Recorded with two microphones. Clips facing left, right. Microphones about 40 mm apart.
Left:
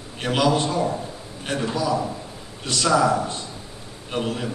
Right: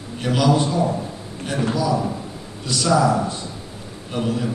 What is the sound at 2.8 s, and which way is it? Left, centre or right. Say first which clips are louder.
A man's voice: right 1 dB; left.